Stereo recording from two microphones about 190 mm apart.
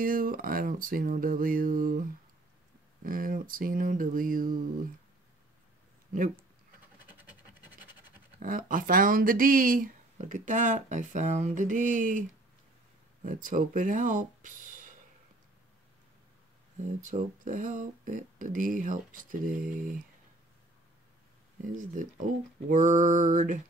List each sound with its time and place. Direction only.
0.0 s speech: 50° right (ahead or behind)
7.1 s scratch: 10° right (ahead or behind)
8.4 s speech: 45° right (ahead or behind)
16.7 s speech: 40° right (ahead or behind)
22.0 s speech: 45° right (ahead or behind)
22.7 s mantra: 40° right (ahead or behind)